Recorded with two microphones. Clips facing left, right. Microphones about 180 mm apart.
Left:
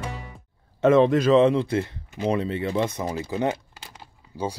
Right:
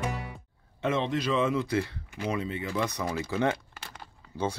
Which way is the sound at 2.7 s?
25° left (ahead or behind).